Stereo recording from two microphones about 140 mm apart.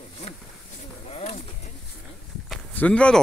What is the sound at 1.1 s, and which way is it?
Bird, 50° left (ahead or behind).